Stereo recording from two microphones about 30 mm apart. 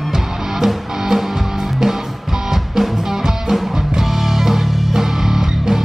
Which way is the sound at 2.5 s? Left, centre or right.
Centre.